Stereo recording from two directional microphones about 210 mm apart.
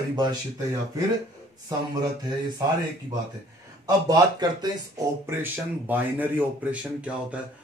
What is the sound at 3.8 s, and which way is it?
Speech, 20° right (ahead or behind).